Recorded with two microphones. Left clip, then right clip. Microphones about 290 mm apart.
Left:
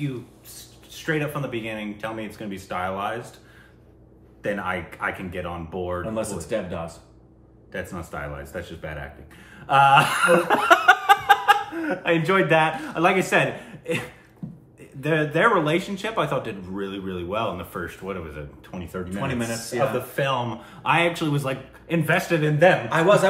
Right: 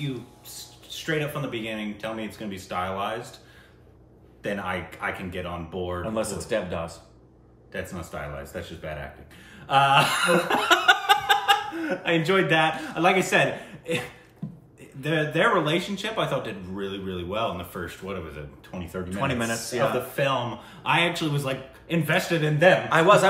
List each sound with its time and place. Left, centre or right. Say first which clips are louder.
0.9 s a man's voice: left 2 dB; centre
4.4 s a man's voice: left 3 dB; centre
7.9 s a man's voice: left 2 dB; centre